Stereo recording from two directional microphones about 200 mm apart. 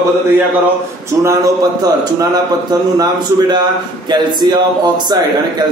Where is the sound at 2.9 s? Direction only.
20° right (ahead or behind).